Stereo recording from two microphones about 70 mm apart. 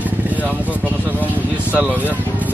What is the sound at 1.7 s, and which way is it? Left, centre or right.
Vehicle, right.